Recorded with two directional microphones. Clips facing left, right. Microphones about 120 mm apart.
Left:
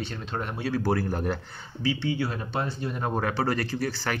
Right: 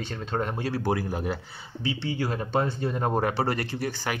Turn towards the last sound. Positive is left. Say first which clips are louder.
# left 1 dB
turn(degrees=-15)  # may be behind; listen again after turning